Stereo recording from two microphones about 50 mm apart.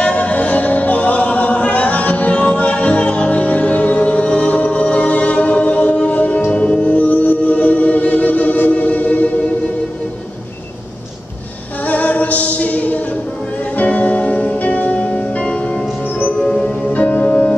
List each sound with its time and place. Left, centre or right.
0.0 s music: left
11.9 s music: left
16.9 s music: left